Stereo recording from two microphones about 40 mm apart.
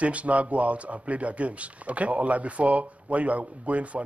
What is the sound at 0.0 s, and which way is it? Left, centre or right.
Speech, right.